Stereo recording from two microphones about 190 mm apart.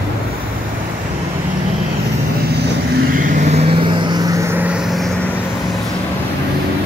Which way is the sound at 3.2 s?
40° right (ahead or behind).